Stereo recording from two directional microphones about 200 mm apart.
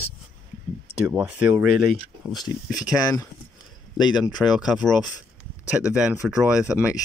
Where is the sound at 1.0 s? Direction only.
10° right (ahead or behind).